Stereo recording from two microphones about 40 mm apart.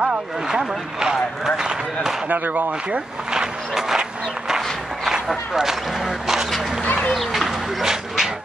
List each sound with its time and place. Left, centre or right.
0.5 s speech: centre
2.2 s speech: right
3.3 s a sound: centre
5.5 s speech: centre
7.1 s speech: centre
7.8 s dog: centre